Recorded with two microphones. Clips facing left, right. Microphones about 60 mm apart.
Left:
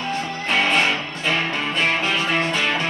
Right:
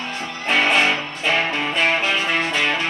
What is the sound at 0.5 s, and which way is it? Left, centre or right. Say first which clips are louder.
Music: right 2 dB; centre.